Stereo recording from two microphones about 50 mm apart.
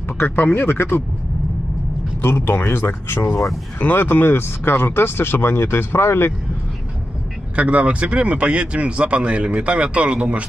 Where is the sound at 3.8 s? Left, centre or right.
Left.